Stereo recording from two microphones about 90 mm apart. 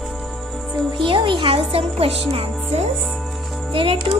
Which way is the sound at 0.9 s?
65° right (ahead or behind).